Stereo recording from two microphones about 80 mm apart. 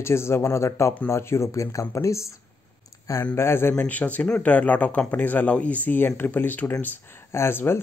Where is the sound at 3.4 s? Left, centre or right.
Left.